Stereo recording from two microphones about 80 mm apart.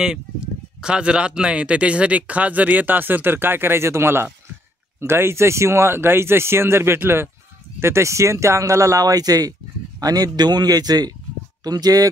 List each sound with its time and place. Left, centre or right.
0.7 s speech: centre; by 12.1 s right